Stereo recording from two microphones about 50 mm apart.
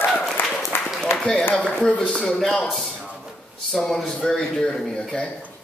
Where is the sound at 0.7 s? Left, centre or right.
Left.